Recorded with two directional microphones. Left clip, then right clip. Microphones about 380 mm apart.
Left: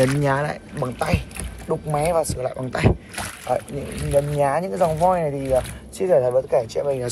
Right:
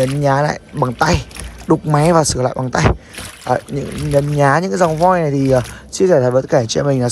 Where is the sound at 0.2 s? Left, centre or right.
Centre.